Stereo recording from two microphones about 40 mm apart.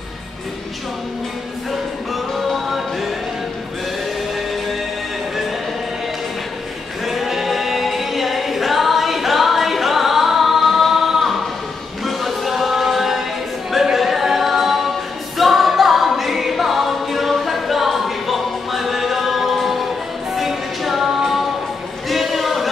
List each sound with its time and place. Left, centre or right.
2.3 s music: centre
7.1 s a capella: centre
12.0 s a sound: centre
13.9 s a capella: centre
15.3 s music: centre
22.1 s a sound: centre